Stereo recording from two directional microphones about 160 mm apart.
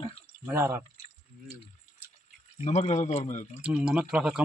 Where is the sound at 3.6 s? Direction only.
5° right (ahead or behind).